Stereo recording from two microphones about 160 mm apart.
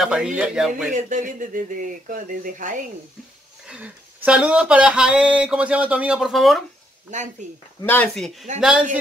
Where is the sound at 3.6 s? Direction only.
10° right (ahead or behind).